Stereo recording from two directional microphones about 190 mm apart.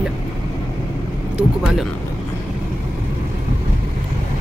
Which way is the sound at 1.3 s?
5° right (ahead or behind).